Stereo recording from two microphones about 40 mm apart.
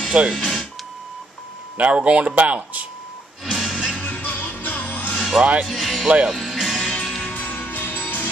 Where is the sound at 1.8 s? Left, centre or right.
Right.